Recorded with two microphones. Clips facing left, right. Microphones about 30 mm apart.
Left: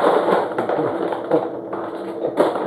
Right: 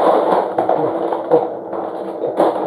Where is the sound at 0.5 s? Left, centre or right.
Centre.